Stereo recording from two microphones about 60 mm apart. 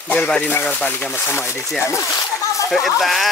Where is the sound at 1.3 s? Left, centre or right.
Left.